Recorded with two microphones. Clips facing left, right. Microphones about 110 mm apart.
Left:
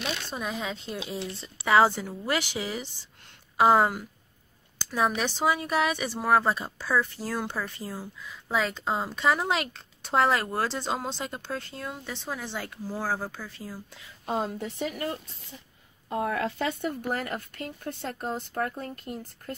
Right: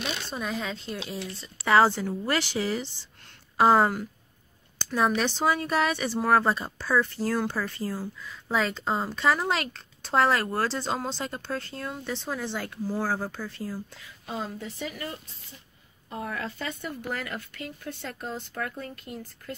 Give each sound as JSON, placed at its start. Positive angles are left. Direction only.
{"t": 0.3, "sound": "speech", "side_deg": 10}
{"t": 1.2, "sound": "speech", "side_deg": 25}
{"t": 1.7, "sound": "speech", "side_deg": 10}
{"t": 14.2, "sound": "speech", "side_deg": 50}
{"t": 17.2, "sound": "speech", "side_deg": 40}